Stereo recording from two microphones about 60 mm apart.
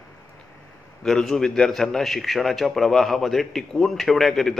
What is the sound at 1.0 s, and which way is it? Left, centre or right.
A man's voice, centre.